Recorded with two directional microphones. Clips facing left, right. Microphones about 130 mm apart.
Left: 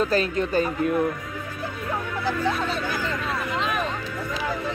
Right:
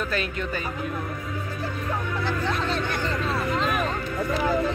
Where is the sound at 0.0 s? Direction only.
35° left (ahead or behind).